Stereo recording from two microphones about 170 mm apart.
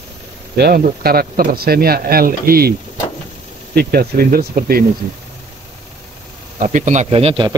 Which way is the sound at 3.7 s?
65° right (ahead or behind).